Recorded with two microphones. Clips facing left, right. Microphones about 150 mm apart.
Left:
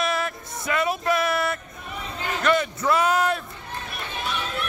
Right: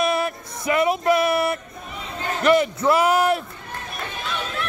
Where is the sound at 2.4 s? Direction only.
25° right (ahead or behind).